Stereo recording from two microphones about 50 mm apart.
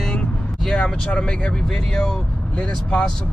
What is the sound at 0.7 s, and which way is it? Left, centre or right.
Speech, centre.